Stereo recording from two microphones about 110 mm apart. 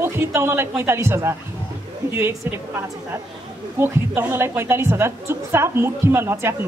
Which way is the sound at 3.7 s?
20° right (ahead or behind).